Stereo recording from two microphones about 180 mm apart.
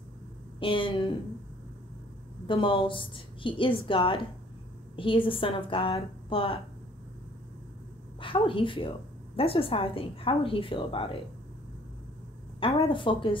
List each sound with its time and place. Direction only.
0.6 s a woman's voice: 30° left (ahead or behind)
2.4 s a woman's voice: 30° left (ahead or behind)
8.2 s a woman's voice: 30° left (ahead or behind)
12.5 s a woman's voice: 30° left (ahead or behind)